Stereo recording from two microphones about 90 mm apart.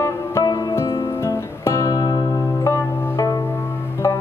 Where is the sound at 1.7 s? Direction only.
30° left (ahead or behind).